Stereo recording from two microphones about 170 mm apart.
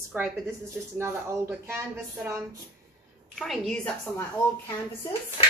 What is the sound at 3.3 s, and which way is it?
Speech, centre (ahead or behind).